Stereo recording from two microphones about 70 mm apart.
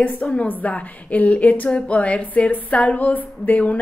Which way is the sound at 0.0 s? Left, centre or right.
Left.